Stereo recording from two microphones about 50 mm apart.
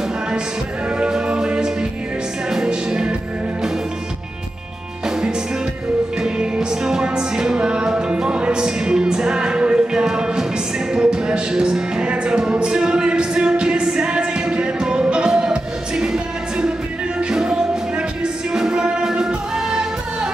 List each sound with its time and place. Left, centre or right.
0.8 s music: centre
5.0 s music: centre